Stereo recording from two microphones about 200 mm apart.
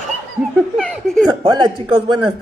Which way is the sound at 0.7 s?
Centre (ahead or behind).